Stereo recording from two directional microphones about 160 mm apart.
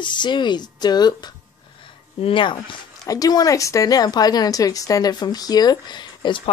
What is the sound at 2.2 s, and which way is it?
Speech, 30° left (ahead or behind).